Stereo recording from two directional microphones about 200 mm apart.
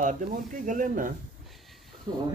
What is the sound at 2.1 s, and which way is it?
Speech, 25° right (ahead or behind).